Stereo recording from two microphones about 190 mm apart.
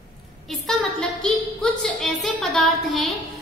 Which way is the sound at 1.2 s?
Centre (ahead or behind).